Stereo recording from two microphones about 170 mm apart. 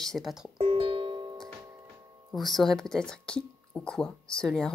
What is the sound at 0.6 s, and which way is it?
Music, 35° right (ahead or behind).